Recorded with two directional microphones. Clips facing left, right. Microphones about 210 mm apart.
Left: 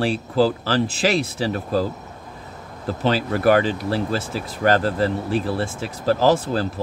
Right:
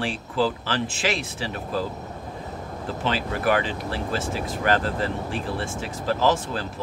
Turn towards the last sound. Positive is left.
turn(degrees=35)  # may be behind; listen again after turning